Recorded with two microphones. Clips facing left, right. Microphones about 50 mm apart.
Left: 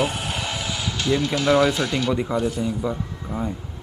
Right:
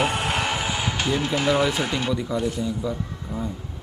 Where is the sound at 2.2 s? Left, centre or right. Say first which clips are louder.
Left 2 dB; left.